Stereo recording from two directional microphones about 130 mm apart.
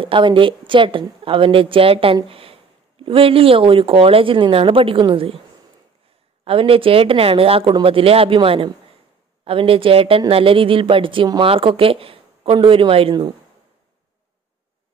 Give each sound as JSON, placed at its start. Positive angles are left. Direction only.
{"t": 0.0, "sound": "a woman's voice", "side_deg": -40}
{"t": 6.4, "sound": "speech", "side_deg": -45}